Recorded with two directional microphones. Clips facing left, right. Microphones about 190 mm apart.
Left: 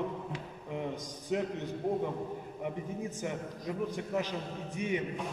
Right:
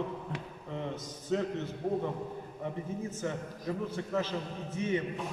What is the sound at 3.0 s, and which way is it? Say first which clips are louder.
A man's voice: right 1 dB; 15° left (ahead or behind).